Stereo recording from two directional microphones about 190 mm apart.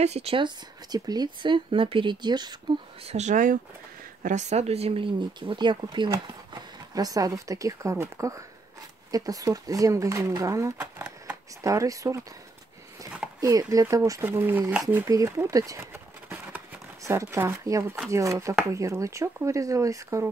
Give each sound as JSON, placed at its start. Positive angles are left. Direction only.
{"t": 0.0, "sound": "speech", "side_deg": -35}
{"t": 0.9, "sound": "speech", "side_deg": -20}
{"t": 3.1, "sound": "speech", "side_deg": -40}
{"t": 13.4, "sound": "speech", "side_deg": -15}